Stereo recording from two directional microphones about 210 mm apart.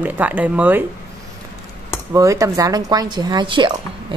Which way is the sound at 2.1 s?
15° right (ahead or behind).